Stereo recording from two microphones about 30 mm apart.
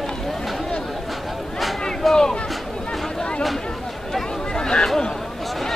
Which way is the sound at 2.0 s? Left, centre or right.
Centre.